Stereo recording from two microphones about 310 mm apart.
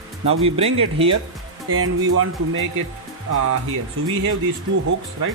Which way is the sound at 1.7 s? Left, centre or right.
Right.